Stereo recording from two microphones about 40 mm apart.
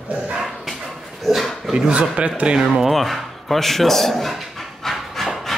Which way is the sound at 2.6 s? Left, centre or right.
Centre.